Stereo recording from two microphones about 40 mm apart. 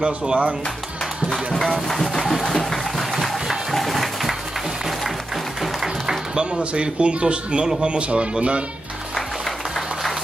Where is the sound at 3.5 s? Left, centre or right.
Centre.